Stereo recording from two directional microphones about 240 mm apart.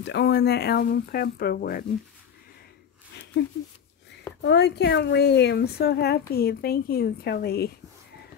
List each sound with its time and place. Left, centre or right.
0.0 s speech: left
4.4 s speech: left